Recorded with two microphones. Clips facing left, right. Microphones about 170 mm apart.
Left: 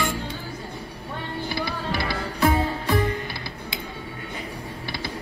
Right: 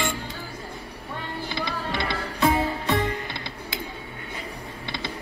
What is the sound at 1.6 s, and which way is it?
Music, 20° right (ahead or behind).